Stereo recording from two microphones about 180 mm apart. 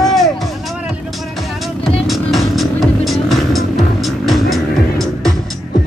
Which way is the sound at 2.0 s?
Centre (ahead or behind).